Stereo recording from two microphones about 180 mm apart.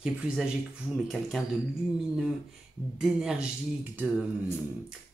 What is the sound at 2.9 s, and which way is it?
Speech, 5° right (ahead or behind).